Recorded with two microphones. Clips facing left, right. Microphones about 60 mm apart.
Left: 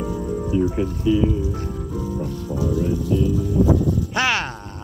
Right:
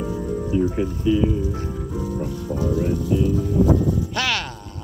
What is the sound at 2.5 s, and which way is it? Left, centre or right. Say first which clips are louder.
Speech: even; right.